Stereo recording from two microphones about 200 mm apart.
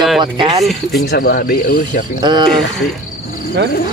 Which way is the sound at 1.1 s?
50° left (ahead or behind).